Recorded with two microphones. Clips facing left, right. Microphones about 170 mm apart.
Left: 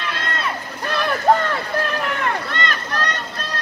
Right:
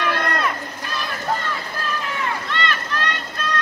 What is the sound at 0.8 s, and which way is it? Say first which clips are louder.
Vehicle: left 9 dB; 65° left (ahead or behind).